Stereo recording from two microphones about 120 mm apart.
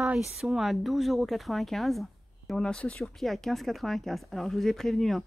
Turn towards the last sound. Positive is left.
turn(degrees=0)  # may be behind; listen again after turning